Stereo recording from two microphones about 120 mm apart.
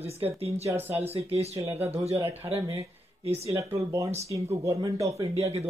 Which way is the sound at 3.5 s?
25° right (ahead or behind).